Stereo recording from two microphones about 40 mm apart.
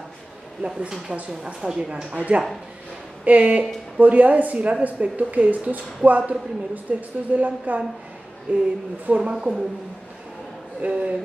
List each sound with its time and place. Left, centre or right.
0.6 s speech: centre
2.1 s a woman's voice: right
9.2 s speech: right
10.8 s a woman's voice: right